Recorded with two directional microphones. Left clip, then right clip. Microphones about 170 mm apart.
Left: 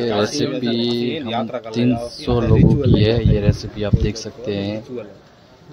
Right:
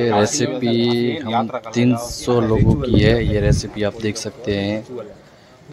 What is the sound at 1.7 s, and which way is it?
Speech, 5° right (ahead or behind).